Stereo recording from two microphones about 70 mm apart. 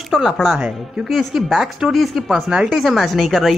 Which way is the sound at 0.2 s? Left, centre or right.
Centre.